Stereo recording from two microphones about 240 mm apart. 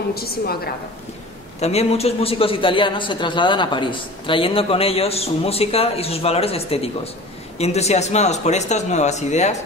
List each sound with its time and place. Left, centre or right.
0.1 s a woman's voice: left
1.6 s a man's voice: left